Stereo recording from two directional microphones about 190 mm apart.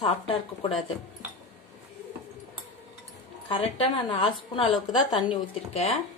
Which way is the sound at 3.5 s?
30° left (ahead or behind).